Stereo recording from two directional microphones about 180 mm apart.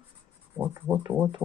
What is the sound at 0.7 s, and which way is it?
Speech, 15° right (ahead or behind).